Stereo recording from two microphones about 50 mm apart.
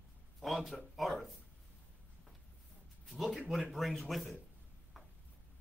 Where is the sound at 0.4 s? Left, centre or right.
Centre.